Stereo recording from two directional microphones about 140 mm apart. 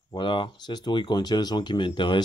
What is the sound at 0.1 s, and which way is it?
Speech, 35° left (ahead or behind).